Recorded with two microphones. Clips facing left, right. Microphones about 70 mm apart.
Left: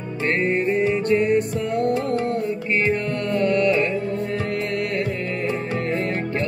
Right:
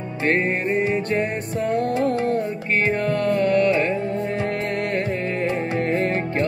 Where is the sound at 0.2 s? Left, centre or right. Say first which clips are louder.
Even; right.